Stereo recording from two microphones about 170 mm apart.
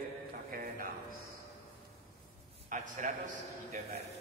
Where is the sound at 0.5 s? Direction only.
60° right (ahead or behind).